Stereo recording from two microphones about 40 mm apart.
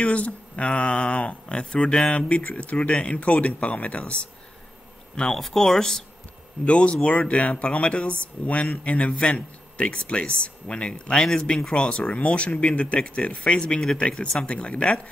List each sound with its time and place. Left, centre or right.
0.0 s speech: left
1.6 s speech: centre; by 4.2 s left
5.3 s speech: centre
6.6 s speech: left
11.1 s speech: centre